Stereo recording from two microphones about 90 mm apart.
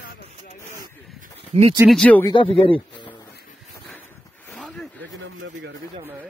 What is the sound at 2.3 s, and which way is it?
Speech, 90° left.